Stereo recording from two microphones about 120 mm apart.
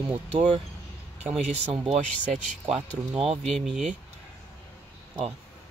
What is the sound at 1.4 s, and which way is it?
Speech, 65° right (ahead or behind).